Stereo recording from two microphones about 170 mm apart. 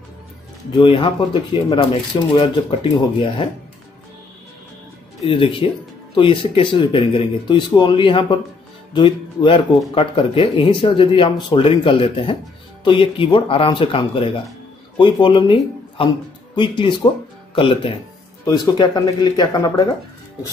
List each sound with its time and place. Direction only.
0.7 s speech: 30° left (ahead or behind)
5.2 s speech: 30° left (ahead or behind)
18.4 s speech: 20° left (ahead or behind)